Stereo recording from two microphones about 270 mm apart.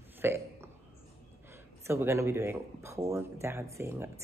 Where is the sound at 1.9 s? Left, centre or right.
Centre.